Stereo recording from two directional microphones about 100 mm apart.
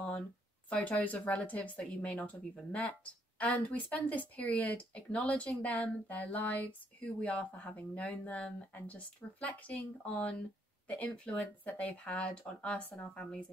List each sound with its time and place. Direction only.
0.7 s speech: 15° left (ahead or behind)